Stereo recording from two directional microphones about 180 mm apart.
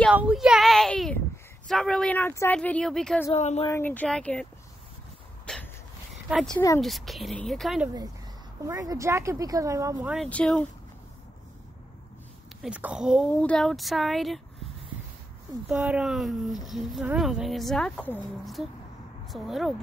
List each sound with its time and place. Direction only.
0.1 s a sound: 5° right (ahead or behind)
1.7 s speech: 5° left (ahead or behind)
3.3 s speech: 35° left (ahead or behind)
3.6 s speech: 10° left (ahead or behind)
5.5 s a sound: 5° left (ahead or behind)
6.2 s speech: 5° right (ahead or behind)
8.6 s speech: 20° right (ahead or behind)
10.1 s speech: 5° left (ahead or behind)
12.6 s speech: 5° right (ahead or behind)
13.3 s speech: 5° left (ahead or behind)
15.7 s speech: 10° right (ahead or behind)